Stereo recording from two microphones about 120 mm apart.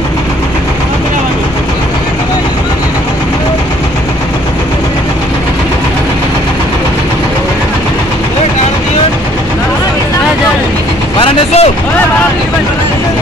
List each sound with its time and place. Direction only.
11.1 s vehicle: 50° left (ahead or behind)